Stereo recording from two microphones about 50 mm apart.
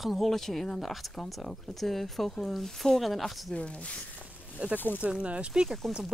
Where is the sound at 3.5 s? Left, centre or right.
Left.